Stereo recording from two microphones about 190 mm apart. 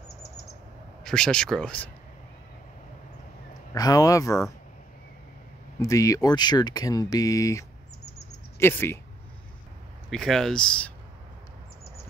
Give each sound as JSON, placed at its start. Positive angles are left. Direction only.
{"t": 1.0, "sound": "speech", "side_deg": 5}
{"t": 3.7, "sound": "speech", "side_deg": 20}
{"t": 5.8, "sound": "speech", "side_deg": 15}
{"t": 10.0, "sound": "speech", "side_deg": 0}